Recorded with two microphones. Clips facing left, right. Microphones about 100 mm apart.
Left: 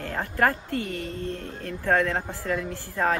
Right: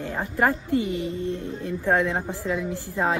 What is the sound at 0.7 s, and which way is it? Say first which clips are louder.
Speech: right 6 dB; 55° left (ahead or behind).